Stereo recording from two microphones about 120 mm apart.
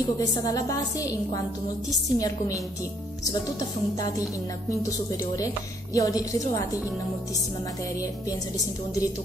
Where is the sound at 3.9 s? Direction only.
30° left (ahead or behind).